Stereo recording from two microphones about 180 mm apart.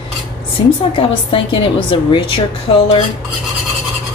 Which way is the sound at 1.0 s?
30° left (ahead or behind).